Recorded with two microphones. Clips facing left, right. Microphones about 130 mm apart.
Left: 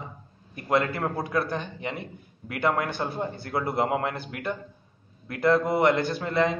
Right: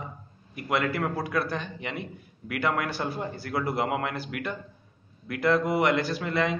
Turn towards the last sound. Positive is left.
turn(degrees=30)  # may be behind; listen again after turning